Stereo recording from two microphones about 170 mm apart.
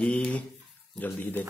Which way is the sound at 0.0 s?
5° left (ahead or behind).